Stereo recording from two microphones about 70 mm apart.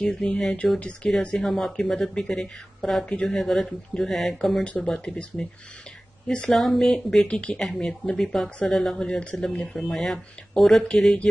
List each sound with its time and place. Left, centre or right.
0.1 s speech: centre
9.8 s speech: centre